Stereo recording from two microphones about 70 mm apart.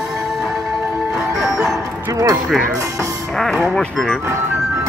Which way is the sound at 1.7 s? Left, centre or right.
Right.